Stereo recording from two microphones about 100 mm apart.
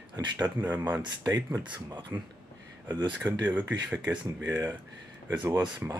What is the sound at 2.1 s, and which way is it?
Speech, 30° right (ahead or behind).